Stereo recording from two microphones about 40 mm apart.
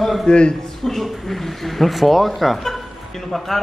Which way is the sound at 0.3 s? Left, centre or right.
Left.